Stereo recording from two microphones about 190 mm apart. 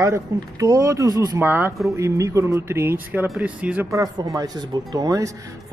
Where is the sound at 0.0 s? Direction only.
15° right (ahead or behind).